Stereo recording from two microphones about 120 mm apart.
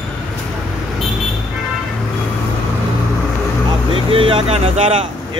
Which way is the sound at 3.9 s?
50° right (ahead or behind).